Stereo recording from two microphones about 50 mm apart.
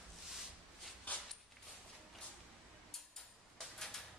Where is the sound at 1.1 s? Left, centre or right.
Left.